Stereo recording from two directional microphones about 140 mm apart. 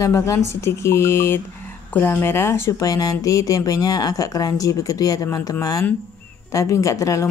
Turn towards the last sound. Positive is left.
turn(degrees=20)  # may be behind; listen again after turning